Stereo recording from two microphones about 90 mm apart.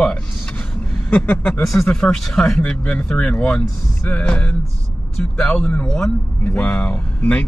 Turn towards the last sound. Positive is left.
turn(degrees=15)  # may be behind; listen again after turning